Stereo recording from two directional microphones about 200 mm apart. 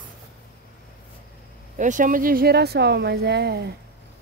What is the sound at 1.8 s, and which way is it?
Speech, 40° right (ahead or behind).